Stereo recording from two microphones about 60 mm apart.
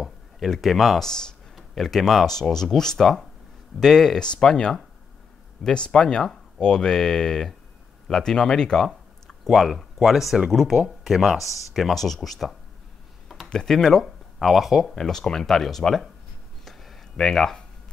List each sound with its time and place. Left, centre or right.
0.0 s speech: centre
15.0 s speech: centre
16.6 s a sound: centre